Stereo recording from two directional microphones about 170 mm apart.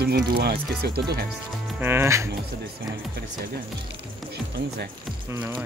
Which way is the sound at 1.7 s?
15° right (ahead or behind).